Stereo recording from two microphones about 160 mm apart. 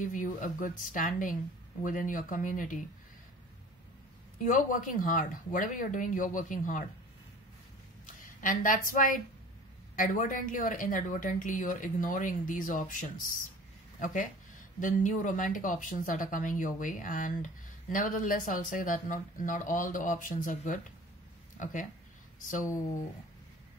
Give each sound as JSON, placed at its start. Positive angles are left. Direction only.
{"t": 0.0, "sound": "speech", "side_deg": 55}
{"t": 4.4, "sound": "speech", "side_deg": 55}
{"t": 8.4, "sound": "speech", "side_deg": 55}
{"t": 22.7, "sound": "speech", "side_deg": 20}